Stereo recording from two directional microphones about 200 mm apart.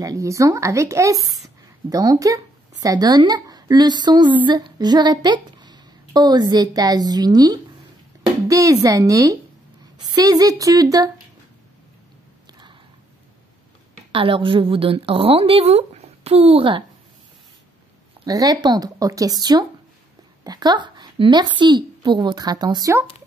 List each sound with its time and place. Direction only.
0.0 s a woman's voice: 15° right (ahead or behind)
12.4 s a sound: 20° right (ahead or behind)
14.1 s a woman's voice: 25° right (ahead or behind)
18.2 s a woman's voice: 20° right (ahead or behind)